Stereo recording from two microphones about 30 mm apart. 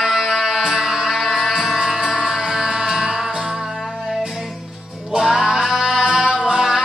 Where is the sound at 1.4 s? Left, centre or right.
Centre.